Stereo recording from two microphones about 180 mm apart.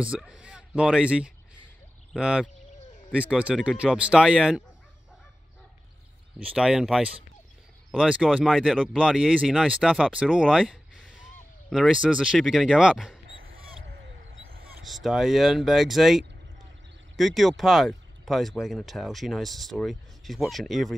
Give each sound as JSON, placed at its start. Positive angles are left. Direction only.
{"t": 0.0, "sound": "speech", "side_deg": -5}
{"t": 6.4, "sound": "speech", "side_deg": -5}
{"t": 13.6, "sound": "a sound", "side_deg": -70}
{"t": 14.5, "sound": "vehicle", "side_deg": -55}
{"t": 14.8, "sound": "speech", "side_deg": 0}